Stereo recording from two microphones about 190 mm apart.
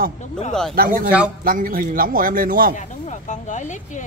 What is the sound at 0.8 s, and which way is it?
Speech, 50° right (ahead or behind).